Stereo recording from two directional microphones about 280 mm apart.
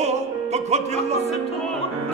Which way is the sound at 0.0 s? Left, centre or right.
Right.